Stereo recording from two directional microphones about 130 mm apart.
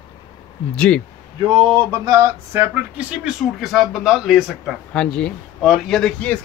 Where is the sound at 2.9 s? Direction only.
5° right (ahead or behind).